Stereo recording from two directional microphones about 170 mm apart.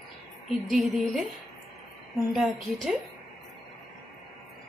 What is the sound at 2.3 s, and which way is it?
Speech, centre (ahead or behind).